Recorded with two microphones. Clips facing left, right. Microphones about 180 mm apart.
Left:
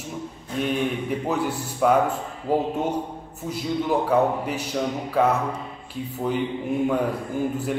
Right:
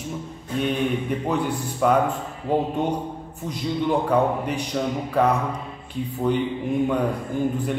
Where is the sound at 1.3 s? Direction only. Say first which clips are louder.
Right 1 dB; 5° left (ahead or behind).